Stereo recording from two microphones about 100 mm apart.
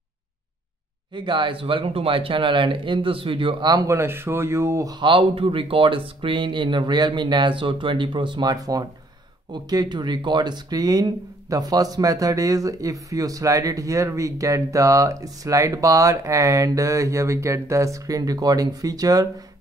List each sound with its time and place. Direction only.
1.1 s speech: 55° right (ahead or behind)
3.7 s speech: 30° right (ahead or behind)
4.9 s speech: 55° right (ahead or behind); by 19.2 s 40° right (ahead or behind)